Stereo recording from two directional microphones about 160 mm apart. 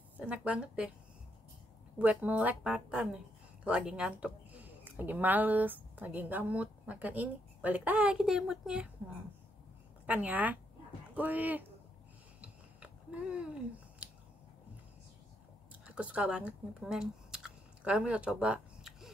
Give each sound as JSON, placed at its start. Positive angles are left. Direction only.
{"t": 0.3, "sound": "speech", "side_deg": -5}
{"t": 2.0, "sound": "speech", "side_deg": -10}
{"t": 10.0, "sound": "speech", "side_deg": -10}
{"t": 12.4, "sound": "a sound", "side_deg": -10}
{"t": 14.0, "sound": "scissors", "side_deg": -10}
{"t": 15.8, "sound": "speech", "side_deg": -5}